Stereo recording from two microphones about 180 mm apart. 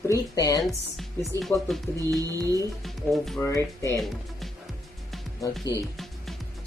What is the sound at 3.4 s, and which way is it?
Speech, 15° left (ahead or behind).